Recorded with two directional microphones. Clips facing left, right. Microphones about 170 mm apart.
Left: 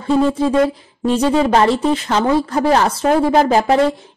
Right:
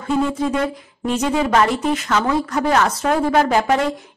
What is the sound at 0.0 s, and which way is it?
Speech, 30° left (ahead or behind).